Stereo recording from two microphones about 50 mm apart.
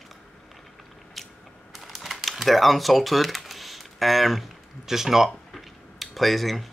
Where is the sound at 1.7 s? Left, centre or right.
Centre.